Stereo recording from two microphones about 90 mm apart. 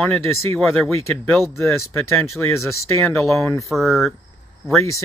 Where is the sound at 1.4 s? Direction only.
30° left (ahead or behind).